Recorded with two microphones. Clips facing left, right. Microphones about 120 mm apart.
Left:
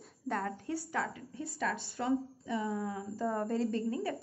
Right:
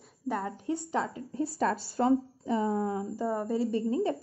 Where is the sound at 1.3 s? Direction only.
35° right (ahead or behind).